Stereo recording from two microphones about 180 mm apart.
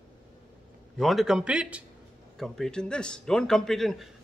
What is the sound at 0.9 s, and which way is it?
A man's voice, centre (ahead or behind).